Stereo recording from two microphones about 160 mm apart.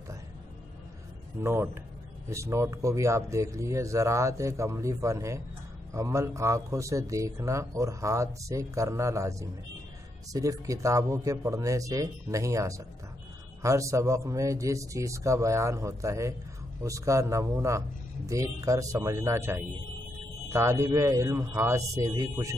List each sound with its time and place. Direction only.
1.4 s speech: 15° right (ahead or behind)